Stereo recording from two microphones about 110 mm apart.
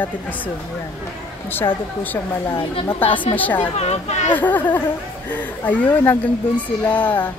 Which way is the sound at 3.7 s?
80° left.